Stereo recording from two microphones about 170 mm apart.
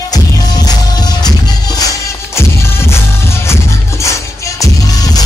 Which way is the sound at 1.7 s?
20° left (ahead or behind).